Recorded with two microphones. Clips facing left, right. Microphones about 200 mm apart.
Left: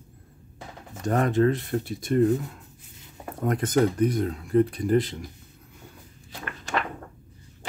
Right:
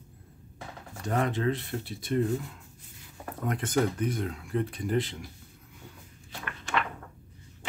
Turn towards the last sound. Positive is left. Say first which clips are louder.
# left 2 dB
turn(degrees=40)  # may be behind; listen again after turning